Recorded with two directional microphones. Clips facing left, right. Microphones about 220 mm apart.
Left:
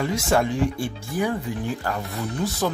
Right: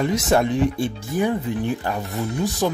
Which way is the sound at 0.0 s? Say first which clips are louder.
Right 3 dB; 20° right (ahead or behind).